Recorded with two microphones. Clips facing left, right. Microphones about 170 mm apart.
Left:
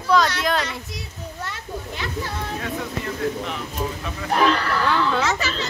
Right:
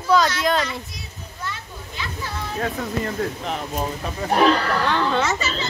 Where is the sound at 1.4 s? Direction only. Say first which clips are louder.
Even; 60° left (ahead or behind).